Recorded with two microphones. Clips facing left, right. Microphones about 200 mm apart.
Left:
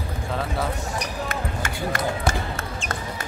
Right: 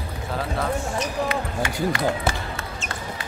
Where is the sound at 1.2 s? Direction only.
45° left (ahead or behind).